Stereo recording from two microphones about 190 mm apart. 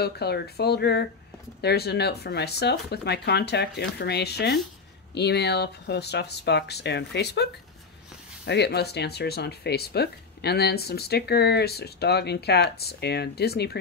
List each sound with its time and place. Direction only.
0.0 s speech: 60° left (ahead or behind)
8.5 s speech: 60° left (ahead or behind)